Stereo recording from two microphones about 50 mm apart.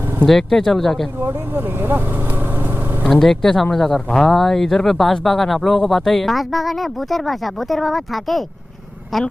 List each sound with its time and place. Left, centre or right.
0.2 s speech: centre
1.2 s vehicle: right
3.1 s speech: centre